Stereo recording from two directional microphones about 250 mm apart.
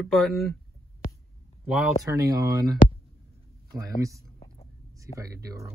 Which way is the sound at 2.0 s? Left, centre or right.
Centre.